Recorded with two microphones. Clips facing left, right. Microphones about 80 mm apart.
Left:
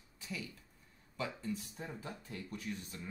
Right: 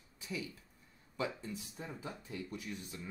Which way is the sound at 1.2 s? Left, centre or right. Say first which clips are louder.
Even; centre.